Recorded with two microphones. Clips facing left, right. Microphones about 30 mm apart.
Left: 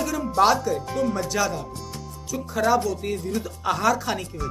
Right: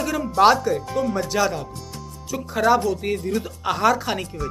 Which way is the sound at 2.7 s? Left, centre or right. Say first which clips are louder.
Right 4 dB; right.